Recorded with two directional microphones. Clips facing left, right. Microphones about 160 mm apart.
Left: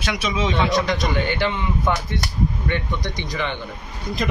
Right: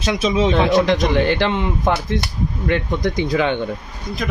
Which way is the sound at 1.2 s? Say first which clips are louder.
Right 5 dB; 80° right.